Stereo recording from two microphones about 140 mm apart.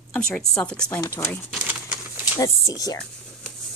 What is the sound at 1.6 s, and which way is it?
Typewriter, 10° right (ahead or behind).